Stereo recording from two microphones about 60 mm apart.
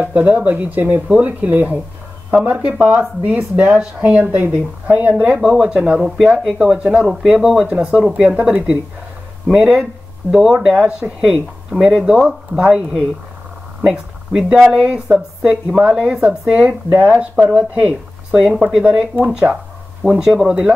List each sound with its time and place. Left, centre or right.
0.0 s speech: right
19.4 s a sound: centre
20.2 s speech: centre